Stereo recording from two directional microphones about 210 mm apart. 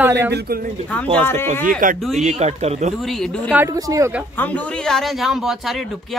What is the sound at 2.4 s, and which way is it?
Speech, 30° right (ahead or behind).